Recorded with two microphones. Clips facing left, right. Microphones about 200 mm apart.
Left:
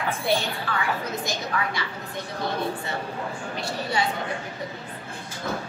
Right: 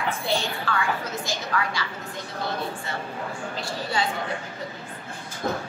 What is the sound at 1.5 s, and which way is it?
Speech, 20° left (ahead or behind).